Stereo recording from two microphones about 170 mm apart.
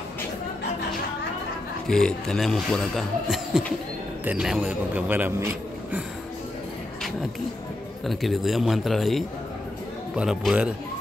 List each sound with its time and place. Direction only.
1.9 s a man's voice: 5° left (ahead or behind)
8.1 s speech: centre (ahead or behind)